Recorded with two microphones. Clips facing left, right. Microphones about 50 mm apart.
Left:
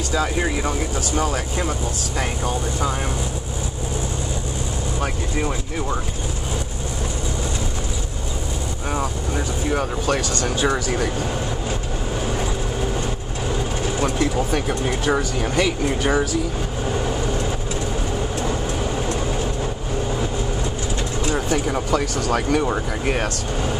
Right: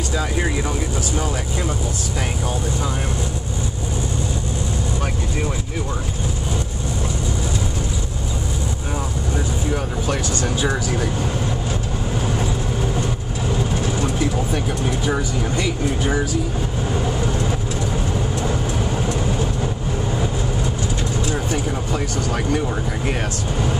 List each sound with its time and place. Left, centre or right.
0.7 s speech: left
2.1 s speech: centre
14.7 s speech: left
15.5 s speech: left
21.5 s speech: left